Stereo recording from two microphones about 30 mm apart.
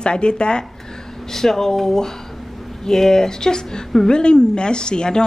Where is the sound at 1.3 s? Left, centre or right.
Centre.